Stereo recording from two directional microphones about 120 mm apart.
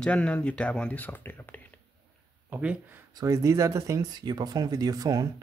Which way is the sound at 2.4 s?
15° right (ahead or behind).